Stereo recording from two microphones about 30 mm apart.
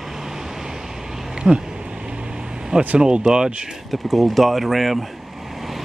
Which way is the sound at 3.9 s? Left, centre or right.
Centre.